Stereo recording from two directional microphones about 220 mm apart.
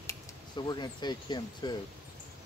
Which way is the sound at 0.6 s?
20° left (ahead or behind).